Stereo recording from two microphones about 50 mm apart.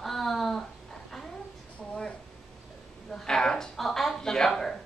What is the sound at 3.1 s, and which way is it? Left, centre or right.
Speech, centre.